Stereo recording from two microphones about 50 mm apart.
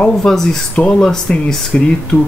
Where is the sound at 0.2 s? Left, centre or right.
Centre.